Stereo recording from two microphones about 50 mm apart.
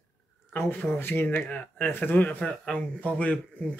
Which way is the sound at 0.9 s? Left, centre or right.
Left.